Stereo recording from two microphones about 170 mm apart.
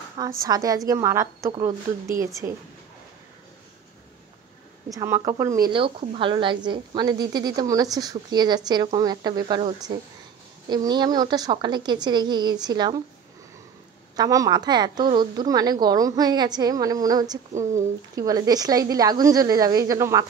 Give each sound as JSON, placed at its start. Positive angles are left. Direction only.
{"t": 0.2, "sound": "a woman's voice", "side_deg": -20}
{"t": 4.8, "sound": "a woman's voice", "side_deg": -20}
{"t": 5.7, "sound": "a woman's voice", "side_deg": -30}
{"t": 14.1, "sound": "a woman's voice", "side_deg": -20}